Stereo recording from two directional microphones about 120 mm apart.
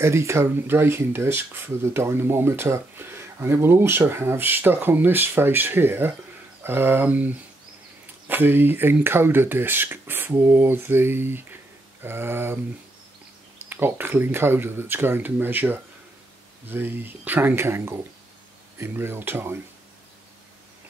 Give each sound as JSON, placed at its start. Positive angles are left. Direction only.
{"t": 0.0, "sound": "speech", "side_deg": -25}
{"t": 13.7, "sound": "speech", "side_deg": -15}